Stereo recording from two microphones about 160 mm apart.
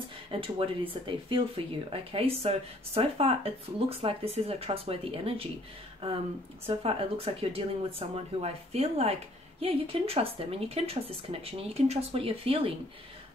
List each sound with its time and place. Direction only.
0.3 s speech: 35° right (ahead or behind)